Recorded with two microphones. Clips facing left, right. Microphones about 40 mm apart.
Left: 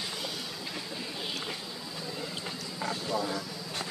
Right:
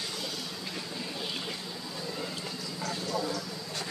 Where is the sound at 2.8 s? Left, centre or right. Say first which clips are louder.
Left 1 dB; centre.